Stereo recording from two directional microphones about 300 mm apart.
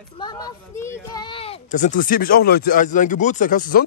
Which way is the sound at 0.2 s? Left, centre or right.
Centre.